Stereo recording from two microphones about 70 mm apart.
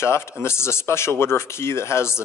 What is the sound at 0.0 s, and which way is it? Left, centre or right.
A man's voice, left.